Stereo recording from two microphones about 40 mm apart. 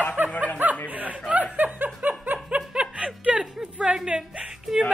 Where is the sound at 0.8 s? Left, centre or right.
Right.